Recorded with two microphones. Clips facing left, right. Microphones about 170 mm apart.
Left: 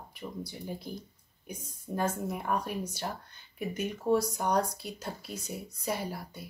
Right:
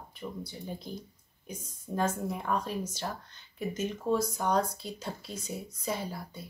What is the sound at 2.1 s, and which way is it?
Speech, 5° left (ahead or behind).